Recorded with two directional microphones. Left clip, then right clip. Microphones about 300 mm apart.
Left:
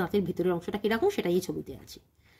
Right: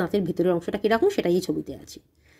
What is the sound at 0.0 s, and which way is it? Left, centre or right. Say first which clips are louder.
Speech: right 5 dB; centre.